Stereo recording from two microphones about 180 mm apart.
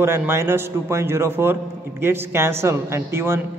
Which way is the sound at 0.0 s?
15° right (ahead or behind).